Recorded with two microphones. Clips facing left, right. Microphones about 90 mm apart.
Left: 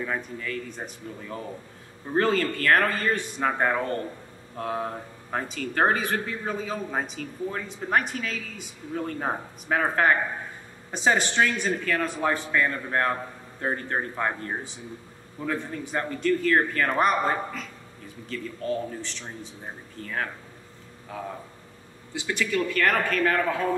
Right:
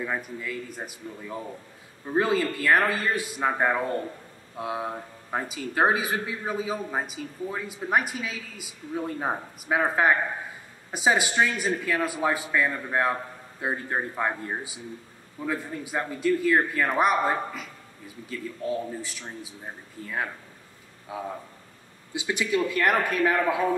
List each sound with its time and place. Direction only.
0.0 s speech: 10° right (ahead or behind)